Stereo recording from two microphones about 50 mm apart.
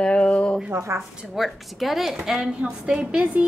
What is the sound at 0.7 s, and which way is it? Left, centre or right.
Speech, right.